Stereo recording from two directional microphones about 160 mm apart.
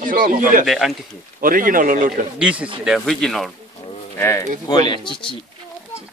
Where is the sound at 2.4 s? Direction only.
5° right (ahead or behind).